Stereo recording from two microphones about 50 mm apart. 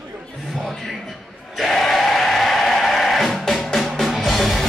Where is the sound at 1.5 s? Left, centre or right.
Centre.